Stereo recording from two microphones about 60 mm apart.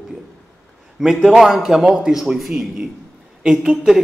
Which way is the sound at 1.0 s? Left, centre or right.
Centre.